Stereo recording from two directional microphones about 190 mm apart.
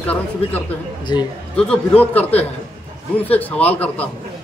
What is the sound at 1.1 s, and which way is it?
Speech, 20° left (ahead or behind).